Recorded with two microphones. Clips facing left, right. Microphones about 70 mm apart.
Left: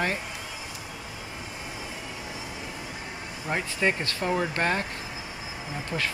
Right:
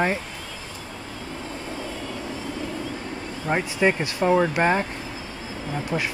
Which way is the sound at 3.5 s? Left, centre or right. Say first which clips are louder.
Right 5 dB; centre.